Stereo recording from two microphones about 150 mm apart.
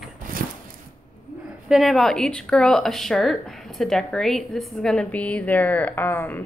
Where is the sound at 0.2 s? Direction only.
65° right (ahead or behind).